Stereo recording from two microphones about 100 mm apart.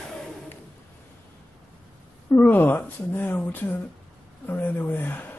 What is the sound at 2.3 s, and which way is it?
Speech, 20° left (ahead or behind).